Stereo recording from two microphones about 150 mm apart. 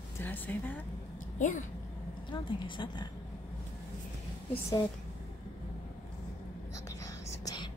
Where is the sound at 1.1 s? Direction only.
60° left (ahead or behind).